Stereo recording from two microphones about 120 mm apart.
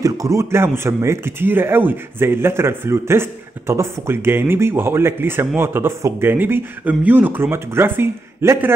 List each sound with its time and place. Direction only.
0.0 s speech: 25° right (ahead or behind)